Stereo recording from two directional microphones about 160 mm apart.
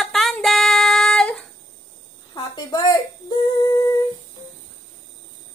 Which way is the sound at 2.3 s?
25° left (ahead or behind).